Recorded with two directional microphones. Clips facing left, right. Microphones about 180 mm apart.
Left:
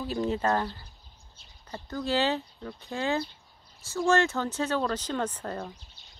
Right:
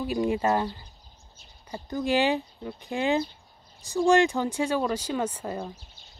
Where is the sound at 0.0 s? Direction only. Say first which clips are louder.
Right 3 dB; 10° right (ahead or behind).